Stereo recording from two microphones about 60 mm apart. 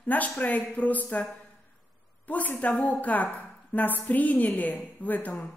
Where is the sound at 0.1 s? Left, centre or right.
Left.